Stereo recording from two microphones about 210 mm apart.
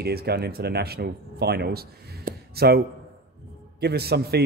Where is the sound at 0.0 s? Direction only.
50° right (ahead or behind).